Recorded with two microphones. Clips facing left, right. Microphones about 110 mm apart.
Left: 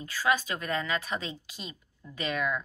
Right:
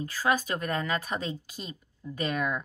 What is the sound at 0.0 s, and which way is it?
Speech, 40° right (ahead or behind).